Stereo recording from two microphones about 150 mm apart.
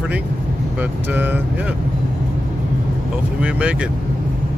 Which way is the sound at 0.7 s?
10° right (ahead or behind).